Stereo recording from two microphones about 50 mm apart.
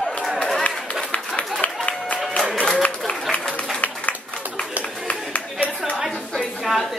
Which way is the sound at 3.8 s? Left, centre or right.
Left.